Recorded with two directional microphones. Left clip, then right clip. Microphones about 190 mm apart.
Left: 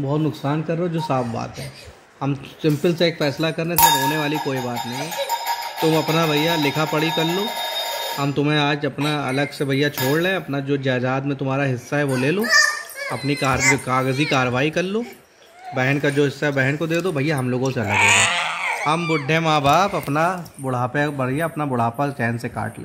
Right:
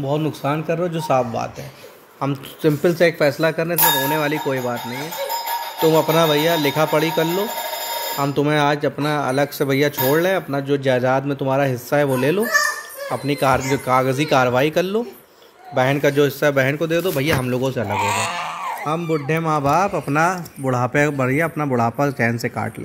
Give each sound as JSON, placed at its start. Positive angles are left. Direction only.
{"t": 0.0, "sound": "speech", "side_deg": 35}
{"t": 5.9, "sound": "speech", "side_deg": 20}
{"t": 17.8, "sound": "a sound", "side_deg": -5}
{"t": 18.9, "sound": "speech", "side_deg": 5}
{"t": 20.1, "sound": "speech", "side_deg": -5}